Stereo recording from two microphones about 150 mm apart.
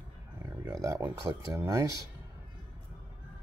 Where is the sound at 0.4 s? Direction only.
20° right (ahead or behind).